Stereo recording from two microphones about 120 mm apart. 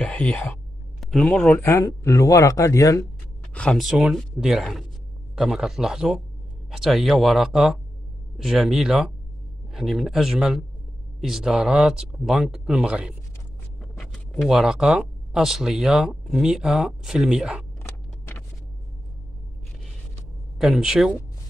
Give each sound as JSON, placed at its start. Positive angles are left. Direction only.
{"t": 0.0, "sound": "speech", "side_deg": 10}
{"t": 3.5, "sound": "speech", "side_deg": 5}
{"t": 20.5, "sound": "speech", "side_deg": -5}